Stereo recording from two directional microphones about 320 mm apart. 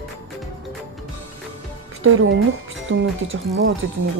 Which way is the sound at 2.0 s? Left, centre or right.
Right.